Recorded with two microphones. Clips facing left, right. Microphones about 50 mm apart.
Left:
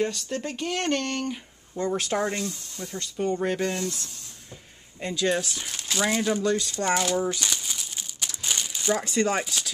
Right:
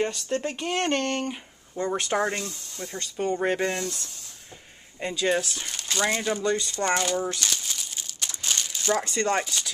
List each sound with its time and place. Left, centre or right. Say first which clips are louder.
0.5 s speech: left 1 dB; right
3.8 s speech: left 1 dB; centre
5.4 s speech: even; centre
6.7 s crumpling: even; centre